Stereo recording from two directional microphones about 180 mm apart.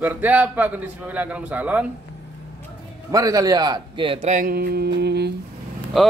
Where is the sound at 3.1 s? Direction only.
20° right (ahead or behind); by 5.3 s 65° right (ahead or behind).